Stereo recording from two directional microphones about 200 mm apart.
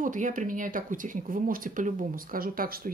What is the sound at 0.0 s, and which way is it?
Speech, 40° right (ahead or behind).